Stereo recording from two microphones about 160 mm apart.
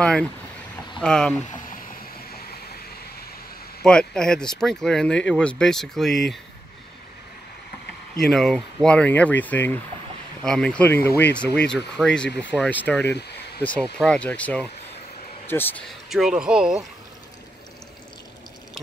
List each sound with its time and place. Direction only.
0.0 s speech: 5° left (ahead or behind)
1.7 s boat: 70° left (ahead or behind)
3.8 s speech: 5° left (ahead or behind)
8.2 s a man's voice: centre (ahead or behind)
16.1 s speech: 5° right (ahead or behind)